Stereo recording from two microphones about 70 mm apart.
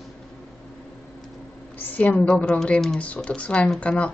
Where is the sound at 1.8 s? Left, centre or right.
Left.